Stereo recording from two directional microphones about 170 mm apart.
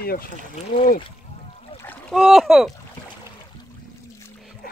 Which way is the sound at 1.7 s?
10° left (ahead or behind).